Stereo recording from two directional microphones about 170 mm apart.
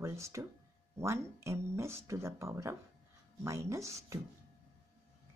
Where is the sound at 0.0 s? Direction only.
15° right (ahead or behind).